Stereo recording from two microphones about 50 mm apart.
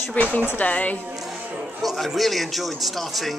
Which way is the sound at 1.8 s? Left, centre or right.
Centre.